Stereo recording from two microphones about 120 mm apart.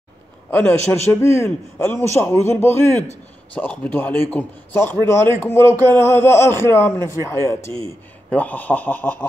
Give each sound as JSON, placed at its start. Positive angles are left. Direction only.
{"t": 0.5, "sound": "a man's voice", "side_deg": 10}
{"t": 1.2, "sound": "a man's voice", "side_deg": 20}
{"t": 8.3, "sound": "a man's voice", "side_deg": 15}